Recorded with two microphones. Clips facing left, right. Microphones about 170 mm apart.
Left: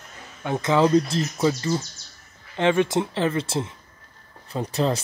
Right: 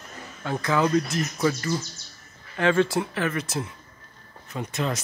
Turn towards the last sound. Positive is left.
turn(degrees=35)  # may be behind; listen again after turning